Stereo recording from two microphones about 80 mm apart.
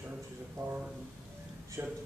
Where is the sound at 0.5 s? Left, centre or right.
Right.